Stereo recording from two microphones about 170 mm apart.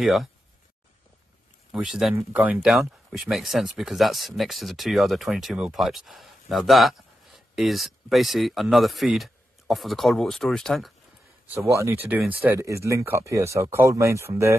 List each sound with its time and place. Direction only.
0.0 s speech: centre (ahead or behind)
1.7 s speech: 5° right (ahead or behind)
11.5 s speech: 15° right (ahead or behind)